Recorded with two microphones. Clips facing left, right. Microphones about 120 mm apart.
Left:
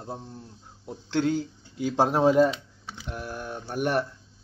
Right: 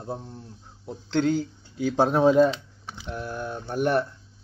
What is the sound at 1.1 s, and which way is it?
Speech, 30° right (ahead or behind).